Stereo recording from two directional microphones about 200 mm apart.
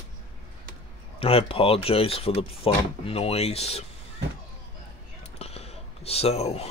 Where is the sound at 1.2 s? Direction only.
30° left (ahead or behind).